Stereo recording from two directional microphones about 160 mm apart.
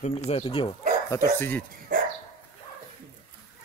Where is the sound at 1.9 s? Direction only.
60° right (ahead or behind).